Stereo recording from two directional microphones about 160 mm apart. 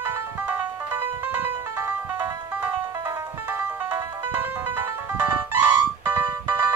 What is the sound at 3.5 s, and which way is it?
Music, 10° right (ahead or behind).